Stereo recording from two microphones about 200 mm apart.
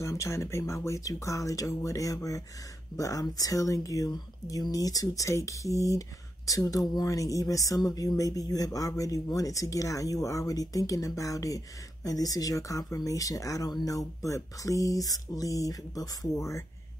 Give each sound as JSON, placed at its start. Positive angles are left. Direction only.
{"t": 0.0, "sound": "speech", "side_deg": 15}